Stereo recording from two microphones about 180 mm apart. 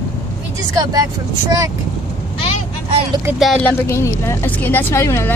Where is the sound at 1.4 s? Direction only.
20° right (ahead or behind).